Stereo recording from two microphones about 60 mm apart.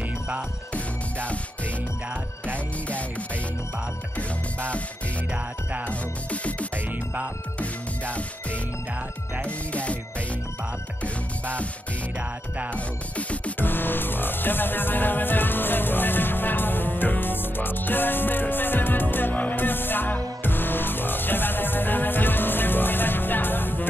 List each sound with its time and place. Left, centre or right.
0.7 s music: left
2.5 s music: left
4.2 s music: left
5.3 s music: right
5.9 s music: left
12.7 s music: left
13.6 s music: left